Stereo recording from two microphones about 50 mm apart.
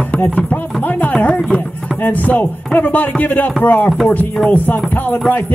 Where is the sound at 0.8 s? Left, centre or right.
Left.